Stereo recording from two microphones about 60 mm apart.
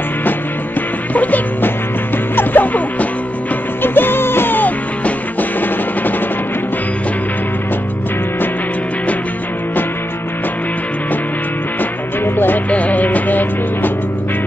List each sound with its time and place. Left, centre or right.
1.1 s music: left
12.6 s music: left